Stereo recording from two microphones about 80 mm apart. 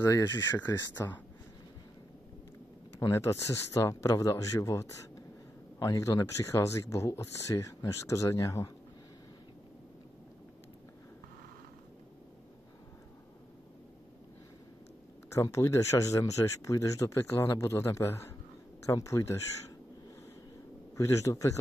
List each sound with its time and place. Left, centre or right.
0.0 s speech: left
3.0 s speech: left
15.3 s speech: left
20.9 s speech: left